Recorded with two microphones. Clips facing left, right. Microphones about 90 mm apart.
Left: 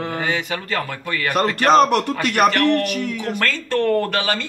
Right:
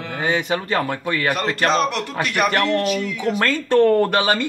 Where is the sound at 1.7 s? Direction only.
50° left (ahead or behind).